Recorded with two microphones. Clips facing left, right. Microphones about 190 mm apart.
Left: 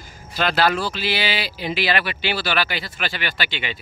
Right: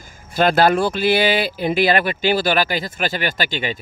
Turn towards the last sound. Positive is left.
turn(degrees=-45)  # may be behind; listen again after turning